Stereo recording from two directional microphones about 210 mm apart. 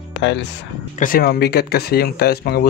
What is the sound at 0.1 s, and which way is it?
Speech, 60° left (ahead or behind).